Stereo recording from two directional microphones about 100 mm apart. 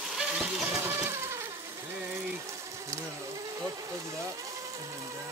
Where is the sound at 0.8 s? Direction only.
20° right (ahead or behind).